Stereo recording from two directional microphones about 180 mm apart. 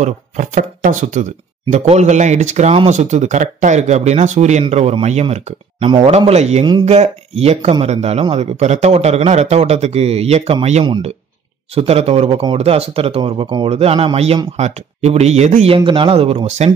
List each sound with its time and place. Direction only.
0.0 s speech: 45° right (ahead or behind)